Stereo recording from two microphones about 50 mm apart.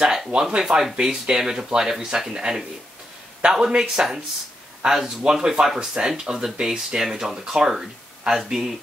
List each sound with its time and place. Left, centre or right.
0.3 s speech: centre
5.2 s speech: centre